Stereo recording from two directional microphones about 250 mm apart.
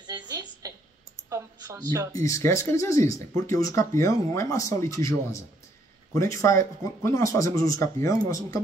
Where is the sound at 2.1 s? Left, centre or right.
Centre.